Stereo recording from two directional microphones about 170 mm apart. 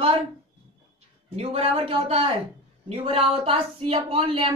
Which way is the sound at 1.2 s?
35° right (ahead or behind).